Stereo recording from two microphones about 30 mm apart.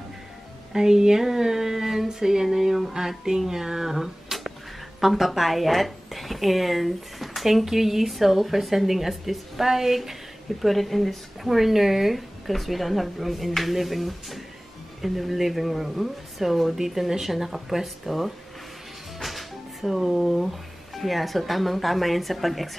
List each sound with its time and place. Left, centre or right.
0.7 s a sound: right
2.0 s music: centre
2.5 s a sound: centre
5.0 s speech: centre
10.6 s speech: centre
19.1 s music: centre
19.8 s speech: centre